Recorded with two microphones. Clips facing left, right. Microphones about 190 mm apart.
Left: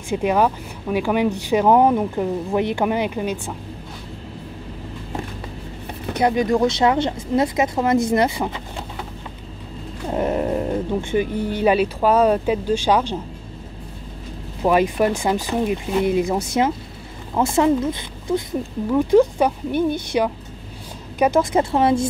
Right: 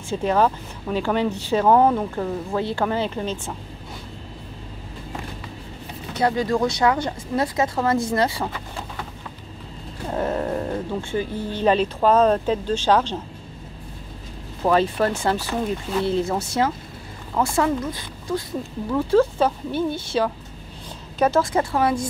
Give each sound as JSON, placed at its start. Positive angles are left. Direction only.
{"t": 0.1, "sound": "speech", "side_deg": 15}
{"t": 6.1, "sound": "speech", "side_deg": 20}
{"t": 10.1, "sound": "speech", "side_deg": 15}
{"t": 14.6, "sound": "speech", "side_deg": 15}